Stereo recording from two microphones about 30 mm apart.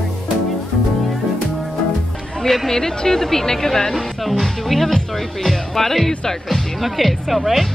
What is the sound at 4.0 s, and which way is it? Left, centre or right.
A woman's voice, centre.